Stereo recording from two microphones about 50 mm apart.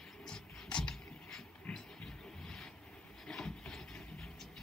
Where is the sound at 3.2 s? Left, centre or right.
Centre.